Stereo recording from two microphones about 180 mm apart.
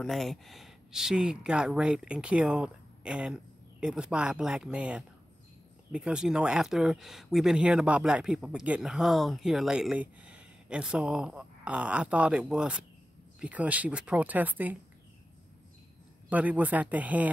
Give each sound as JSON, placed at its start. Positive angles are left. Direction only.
{"t": 0.0, "sound": "speech", "side_deg": 0}
{"t": 16.3, "sound": "speech", "side_deg": -10}